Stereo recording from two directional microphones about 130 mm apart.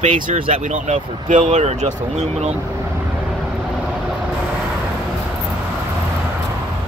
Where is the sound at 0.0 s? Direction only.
70° right (ahead or behind).